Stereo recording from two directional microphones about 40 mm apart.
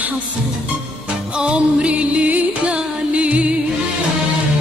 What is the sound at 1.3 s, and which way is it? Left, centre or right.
Music, right.